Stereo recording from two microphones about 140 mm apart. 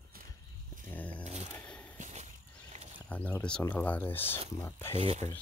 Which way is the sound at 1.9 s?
55° right (ahead or behind).